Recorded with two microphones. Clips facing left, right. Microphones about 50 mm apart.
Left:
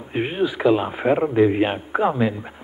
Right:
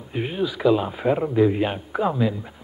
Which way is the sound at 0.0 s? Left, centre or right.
Left.